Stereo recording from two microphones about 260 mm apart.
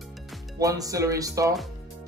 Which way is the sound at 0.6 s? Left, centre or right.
Centre.